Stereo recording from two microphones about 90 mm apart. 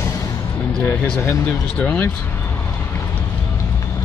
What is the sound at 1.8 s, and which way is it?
Speech, 20° left (ahead or behind).